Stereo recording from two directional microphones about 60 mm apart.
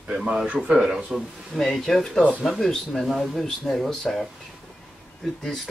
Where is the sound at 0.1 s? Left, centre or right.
Centre.